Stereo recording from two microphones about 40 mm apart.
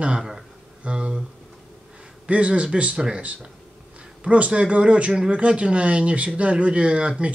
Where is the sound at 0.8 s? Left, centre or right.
Right.